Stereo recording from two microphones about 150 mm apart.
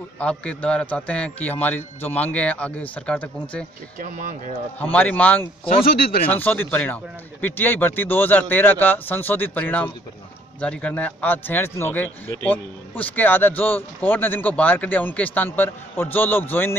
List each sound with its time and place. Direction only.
0.2 s speech: 10° left (ahead or behind)
4.0 s speech: 65° right (ahead or behind)
4.7 s speech: 10° left (ahead or behind)